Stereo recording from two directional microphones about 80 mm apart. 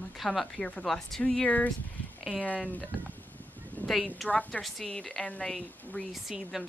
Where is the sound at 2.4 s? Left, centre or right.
Centre.